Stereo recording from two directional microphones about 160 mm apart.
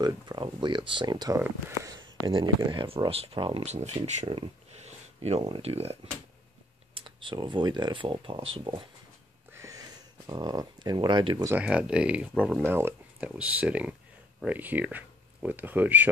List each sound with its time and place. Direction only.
0.0 s speech: 25° right (ahead or behind)
9.5 s a sound: 20° right (ahead or behind)
11.5 s speech: 5° right (ahead or behind)